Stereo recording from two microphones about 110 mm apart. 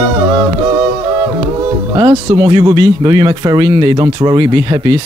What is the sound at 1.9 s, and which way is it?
Speech, 40° right (ahead or behind).